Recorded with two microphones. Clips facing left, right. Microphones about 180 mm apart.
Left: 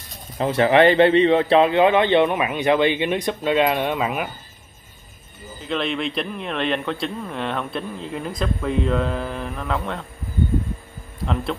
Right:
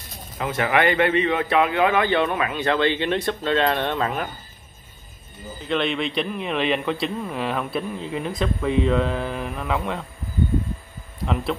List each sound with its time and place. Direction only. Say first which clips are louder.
0.4 s a man's voice: left 6 dB; 30° left (ahead or behind); by 4.3 s 10° left (ahead or behind)
5.6 s speech: right 1 dB; centre (ahead or behind)